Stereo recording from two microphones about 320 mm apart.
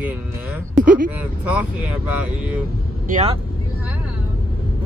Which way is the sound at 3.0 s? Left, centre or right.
Right.